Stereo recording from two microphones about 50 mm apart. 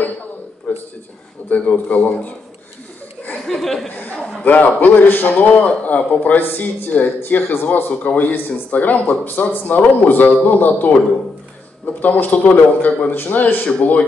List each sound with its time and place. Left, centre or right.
0.7 s a sound: left
1.5 s a man's voice: left
3.4 s speech: centre
4.0 s a sound: left
4.4 s a man's voice: left
13.7 s speech: left